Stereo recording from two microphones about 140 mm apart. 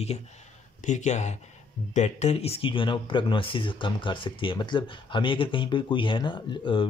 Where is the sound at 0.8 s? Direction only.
60° left (ahead or behind).